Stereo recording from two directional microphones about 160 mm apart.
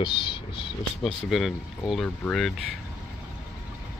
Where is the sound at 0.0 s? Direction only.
30° left (ahead or behind).